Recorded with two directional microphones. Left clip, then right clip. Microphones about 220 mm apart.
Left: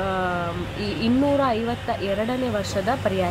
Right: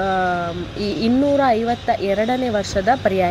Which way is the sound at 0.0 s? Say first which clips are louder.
Right 5 dB; 20° right (ahead or behind).